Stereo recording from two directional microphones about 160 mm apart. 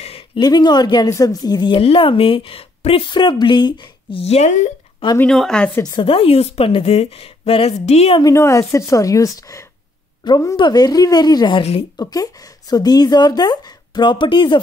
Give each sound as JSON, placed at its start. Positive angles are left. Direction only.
{"t": 0.4, "sound": "speech", "side_deg": 25}
{"t": 5.2, "sound": "speech", "side_deg": 5}
{"t": 5.9, "sound": "speech", "side_deg": 35}
{"t": 8.2, "sound": "a woman's voice", "side_deg": 20}
{"t": 12.0, "sound": "a woman's voice", "side_deg": 25}